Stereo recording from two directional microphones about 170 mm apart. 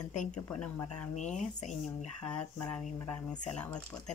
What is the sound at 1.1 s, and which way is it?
Speech, 45° left (ahead or behind).